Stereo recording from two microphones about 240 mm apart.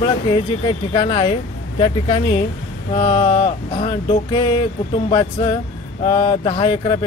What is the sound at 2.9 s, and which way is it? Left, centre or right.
Speech, left.